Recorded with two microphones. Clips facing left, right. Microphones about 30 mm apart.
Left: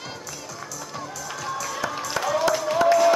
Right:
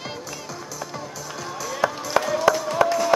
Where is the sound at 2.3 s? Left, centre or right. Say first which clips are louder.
Even; centre.